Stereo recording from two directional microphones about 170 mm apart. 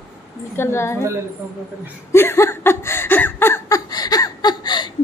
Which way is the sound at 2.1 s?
15° left (ahead or behind).